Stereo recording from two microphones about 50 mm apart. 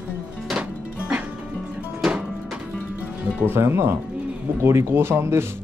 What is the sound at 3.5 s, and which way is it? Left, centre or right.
Speech, right.